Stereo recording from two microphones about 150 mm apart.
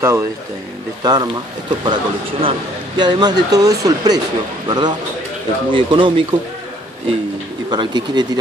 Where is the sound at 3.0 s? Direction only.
30° right (ahead or behind).